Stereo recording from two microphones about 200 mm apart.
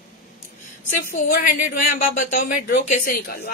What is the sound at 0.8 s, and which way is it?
A woman's voice, 40° left (ahead or behind).